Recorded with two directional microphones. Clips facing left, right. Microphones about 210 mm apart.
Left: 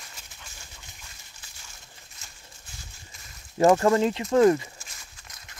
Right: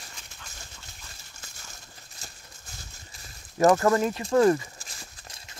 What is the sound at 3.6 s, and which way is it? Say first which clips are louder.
Speech: left 1 dB; 15° left (ahead or behind).